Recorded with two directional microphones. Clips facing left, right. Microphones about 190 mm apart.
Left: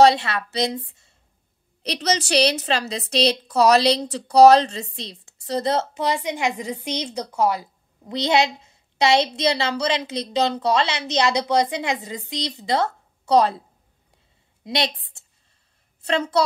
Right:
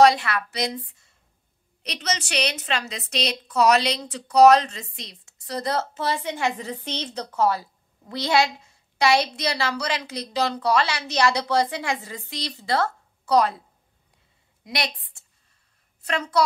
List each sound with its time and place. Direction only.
0.0 s a woman's voice: 25° left (ahead or behind)
14.6 s a woman's voice: 25° left (ahead or behind)
16.0 s a woman's voice: 25° left (ahead or behind)